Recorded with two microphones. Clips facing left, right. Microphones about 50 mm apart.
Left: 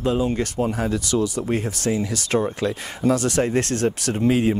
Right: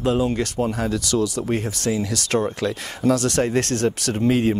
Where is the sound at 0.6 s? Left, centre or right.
Centre.